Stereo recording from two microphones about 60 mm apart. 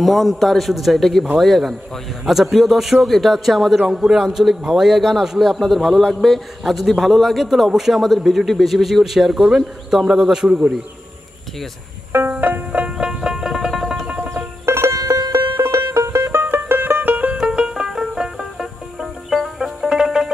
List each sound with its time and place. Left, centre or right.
0.0 s a man's voice: centre
12.3 s music: right
12.9 s music: centre
14.0 s music: right
14.3 s music: right
15.0 s music: right
15.9 s music: right
16.3 s music: right
17.3 s music: centre